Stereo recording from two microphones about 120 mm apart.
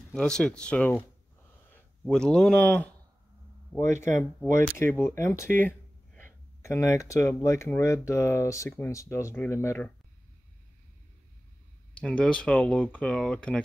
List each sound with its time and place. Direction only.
0.1 s speech: 5° left (ahead or behind)
2.0 s speech: 5° left (ahead or behind)
11.9 s speech: 10° left (ahead or behind)